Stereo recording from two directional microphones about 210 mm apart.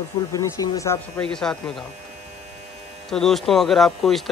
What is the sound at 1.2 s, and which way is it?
Speech, 5° left (ahead or behind).